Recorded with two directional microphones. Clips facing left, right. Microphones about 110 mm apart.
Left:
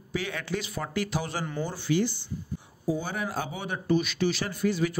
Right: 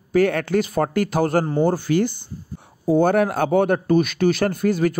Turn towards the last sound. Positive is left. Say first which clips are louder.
# right 8 dB
turn(degrees=-50)  # may be behind; listen again after turning